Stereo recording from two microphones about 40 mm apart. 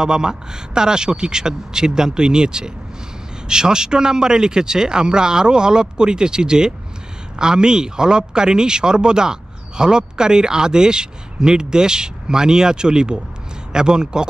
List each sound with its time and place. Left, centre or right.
0.0 s speech: centre